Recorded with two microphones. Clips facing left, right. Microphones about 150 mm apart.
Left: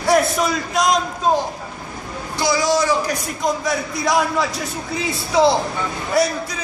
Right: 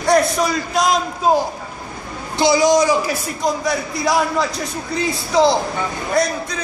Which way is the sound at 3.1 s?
Centre (ahead or behind).